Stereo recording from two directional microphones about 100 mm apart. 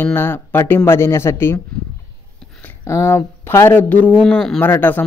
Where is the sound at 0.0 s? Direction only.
20° left (ahead or behind).